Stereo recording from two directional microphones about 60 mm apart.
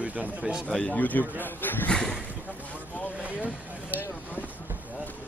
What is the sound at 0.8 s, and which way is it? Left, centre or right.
A man's voice, left.